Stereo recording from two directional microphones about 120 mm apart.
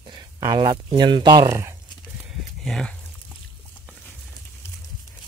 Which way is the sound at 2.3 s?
Centre (ahead or behind).